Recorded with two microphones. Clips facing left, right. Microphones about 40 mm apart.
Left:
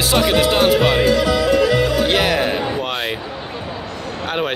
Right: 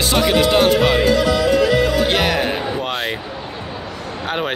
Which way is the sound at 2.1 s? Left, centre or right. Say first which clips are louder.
Left 1 dB; centre.